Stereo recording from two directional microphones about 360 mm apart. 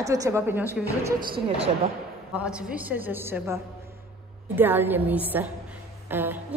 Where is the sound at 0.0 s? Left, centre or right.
Centre.